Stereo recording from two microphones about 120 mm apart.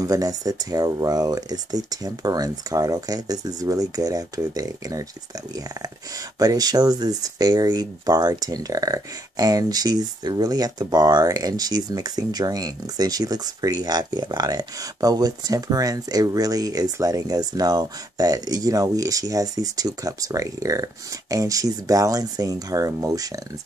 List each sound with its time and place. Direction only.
0.0 s speech: 30° right (ahead or behind)
6.4 s speech: 30° right (ahead or behind)